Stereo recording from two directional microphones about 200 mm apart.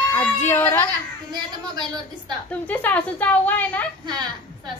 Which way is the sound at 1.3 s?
20° right (ahead or behind).